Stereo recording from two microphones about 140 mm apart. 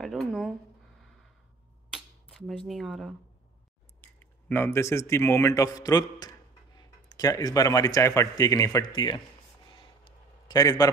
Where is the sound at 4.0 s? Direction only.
15° left (ahead or behind); by 9.2 s 35° left (ahead or behind).